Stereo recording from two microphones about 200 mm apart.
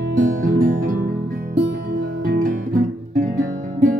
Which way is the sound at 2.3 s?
40° right (ahead or behind).